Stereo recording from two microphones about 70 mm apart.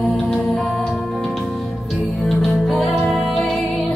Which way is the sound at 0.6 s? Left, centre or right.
Centre.